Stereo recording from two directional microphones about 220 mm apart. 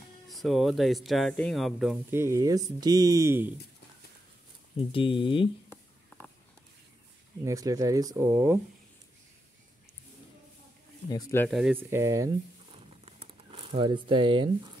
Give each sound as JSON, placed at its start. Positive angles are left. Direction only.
{"t": 0.3, "sound": "speech", "side_deg": 0}
{"t": 4.7, "sound": "speech", "side_deg": 25}
{"t": 7.4, "sound": "speech", "side_deg": -15}
{"t": 11.1, "sound": "speech", "side_deg": 15}
{"t": 11.4, "sound": "speech", "side_deg": 0}
{"t": 12.7, "sound": "a sound", "side_deg": -25}